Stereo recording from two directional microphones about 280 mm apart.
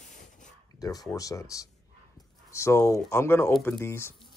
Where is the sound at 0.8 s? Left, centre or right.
Centre.